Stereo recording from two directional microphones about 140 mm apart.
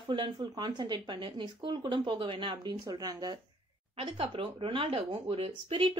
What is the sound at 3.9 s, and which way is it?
A woman's voice, 40° right (ahead or behind).